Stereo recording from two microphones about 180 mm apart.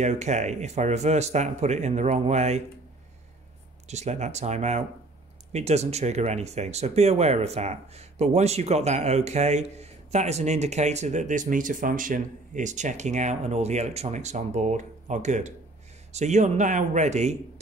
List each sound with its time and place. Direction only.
0.0 s speech: 40° right (ahead or behind)
3.8 s speech: 40° right (ahead or behind)